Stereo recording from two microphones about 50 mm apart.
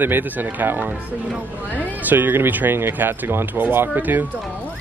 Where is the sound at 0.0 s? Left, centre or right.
Right.